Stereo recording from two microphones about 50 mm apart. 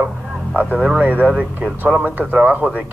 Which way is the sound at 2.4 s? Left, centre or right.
Right.